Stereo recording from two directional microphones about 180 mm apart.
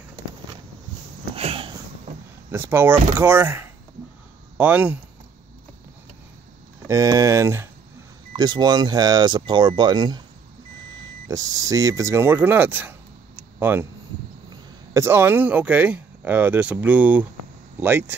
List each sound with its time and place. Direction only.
1.3 s a sound: 30° right (ahead or behind)
2.5 s speech: 15° right (ahead or behind)
6.9 s speech: 20° right (ahead or behind)
11.2 s speech: 20° right (ahead or behind)